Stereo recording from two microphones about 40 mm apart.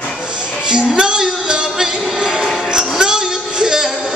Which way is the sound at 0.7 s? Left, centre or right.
Right.